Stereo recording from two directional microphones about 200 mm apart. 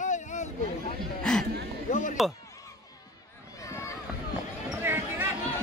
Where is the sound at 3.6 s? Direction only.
15° left (ahead or behind).